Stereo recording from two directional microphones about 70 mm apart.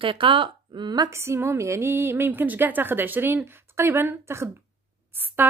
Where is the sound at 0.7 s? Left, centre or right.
Right.